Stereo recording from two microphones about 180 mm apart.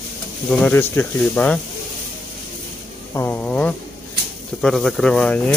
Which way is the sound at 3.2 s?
10° left (ahead or behind).